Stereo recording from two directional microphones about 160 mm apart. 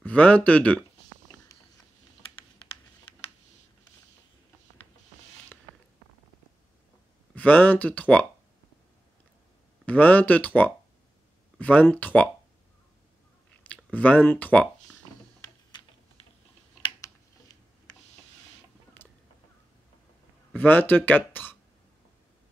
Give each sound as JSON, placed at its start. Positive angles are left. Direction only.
{"t": 0.0, "sound": "speech", "side_deg": 10}
{"t": 7.3, "sound": "speech", "side_deg": 10}
{"t": 9.8, "sound": "speech", "side_deg": 10}
{"t": 13.9, "sound": "speech", "side_deg": 10}
{"t": 16.8, "sound": "typing", "side_deg": 25}
{"t": 20.5, "sound": "speech", "side_deg": 10}